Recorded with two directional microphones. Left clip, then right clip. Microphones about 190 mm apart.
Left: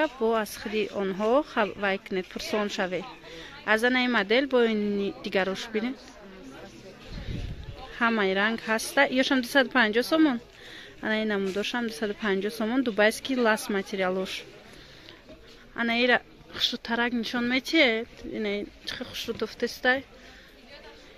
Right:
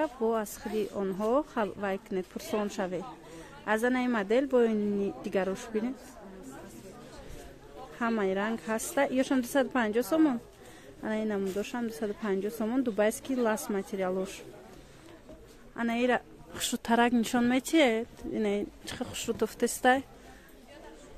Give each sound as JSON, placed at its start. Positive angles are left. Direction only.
{"t": 0.0, "sound": "a woman's voice", "side_deg": -5}
{"t": 8.0, "sound": "a woman's voice", "side_deg": 0}
{"t": 15.7, "sound": "a woman's voice", "side_deg": -5}
{"t": 16.7, "sound": "speech", "side_deg": -25}